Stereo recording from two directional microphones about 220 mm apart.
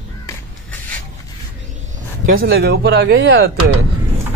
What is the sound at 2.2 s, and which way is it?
Speech, 45° right (ahead or behind).